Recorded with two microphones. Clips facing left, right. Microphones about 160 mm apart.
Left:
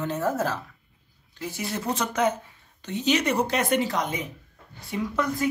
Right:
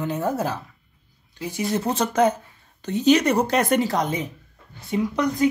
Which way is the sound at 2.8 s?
40° right (ahead or behind).